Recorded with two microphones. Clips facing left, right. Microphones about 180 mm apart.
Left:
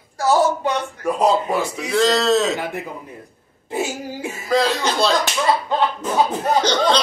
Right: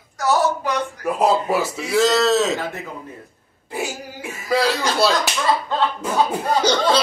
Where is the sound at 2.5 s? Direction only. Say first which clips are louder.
Left 2 dB; 15° left (ahead or behind).